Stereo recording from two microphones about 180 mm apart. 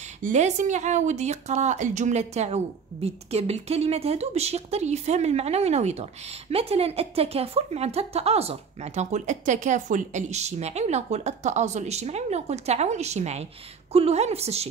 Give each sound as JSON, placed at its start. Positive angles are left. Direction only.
{"t": 0.2, "sound": "speech", "side_deg": -40}